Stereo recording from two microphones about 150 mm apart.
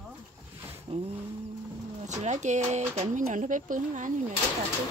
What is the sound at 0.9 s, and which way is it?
Speech, 45° right (ahead or behind).